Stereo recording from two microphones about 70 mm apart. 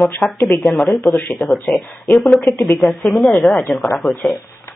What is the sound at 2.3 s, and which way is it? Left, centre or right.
Speech, left.